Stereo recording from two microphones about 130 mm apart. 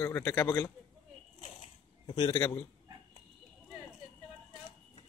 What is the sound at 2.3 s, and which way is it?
Speech, 30° left (ahead or behind).